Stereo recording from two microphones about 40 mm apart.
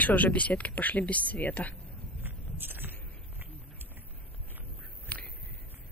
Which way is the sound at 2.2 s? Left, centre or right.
Right.